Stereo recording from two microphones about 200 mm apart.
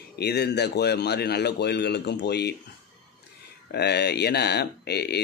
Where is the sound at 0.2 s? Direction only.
55° left (ahead or behind).